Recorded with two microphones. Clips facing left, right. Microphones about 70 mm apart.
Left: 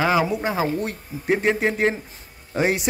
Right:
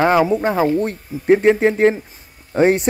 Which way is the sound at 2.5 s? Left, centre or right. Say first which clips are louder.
Right 7 dB; right.